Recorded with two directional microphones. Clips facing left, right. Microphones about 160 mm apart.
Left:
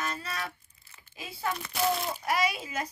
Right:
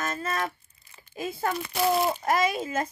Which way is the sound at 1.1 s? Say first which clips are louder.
Right 5 dB; 45° right (ahead or behind).